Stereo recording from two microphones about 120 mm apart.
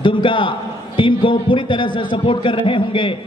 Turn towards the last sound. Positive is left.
turn(degrees=45)  # may be behind; listen again after turning